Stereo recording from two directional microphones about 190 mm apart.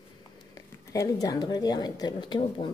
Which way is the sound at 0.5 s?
20° left (ahead or behind).